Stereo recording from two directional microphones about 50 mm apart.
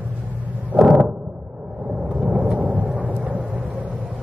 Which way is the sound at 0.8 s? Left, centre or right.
Centre.